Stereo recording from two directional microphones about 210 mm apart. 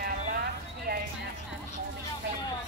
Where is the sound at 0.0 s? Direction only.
45° right (ahead or behind).